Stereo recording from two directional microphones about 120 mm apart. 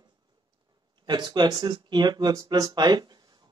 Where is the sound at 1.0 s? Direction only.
40° right (ahead or behind).